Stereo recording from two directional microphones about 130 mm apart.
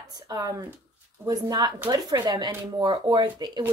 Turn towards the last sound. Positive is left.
turn(degrees=-35)  # may be behind; listen again after turning